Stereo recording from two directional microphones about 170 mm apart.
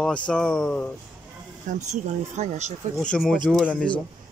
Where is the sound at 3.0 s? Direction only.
5° left (ahead or behind).